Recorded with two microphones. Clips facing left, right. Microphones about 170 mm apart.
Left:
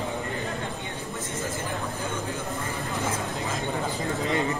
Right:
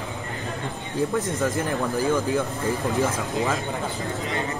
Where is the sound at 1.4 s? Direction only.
70° right (ahead or behind).